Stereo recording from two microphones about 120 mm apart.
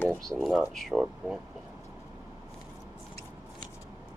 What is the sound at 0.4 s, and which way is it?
Speech, centre (ahead or behind).